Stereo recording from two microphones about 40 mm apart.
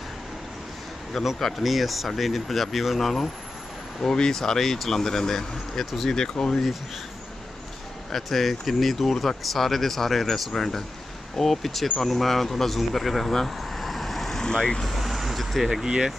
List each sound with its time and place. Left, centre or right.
1.1 s speech: centre
8.1 s speech: centre
13.6 s vehicle: centre
14.4 s speech: centre
15.0 s vehicle: centre